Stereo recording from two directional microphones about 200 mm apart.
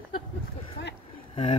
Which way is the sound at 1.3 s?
30° left (ahead or behind).